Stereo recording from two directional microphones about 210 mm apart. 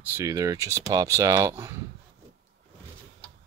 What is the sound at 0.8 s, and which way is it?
Speech, 15° right (ahead or behind).